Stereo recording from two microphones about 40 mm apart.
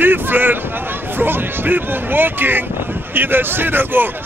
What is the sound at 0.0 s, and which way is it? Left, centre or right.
A man's voice, right.